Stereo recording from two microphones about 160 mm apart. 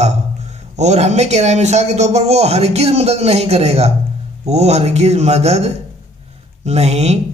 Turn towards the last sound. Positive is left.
turn(degrees=-40)  # may be behind; listen again after turning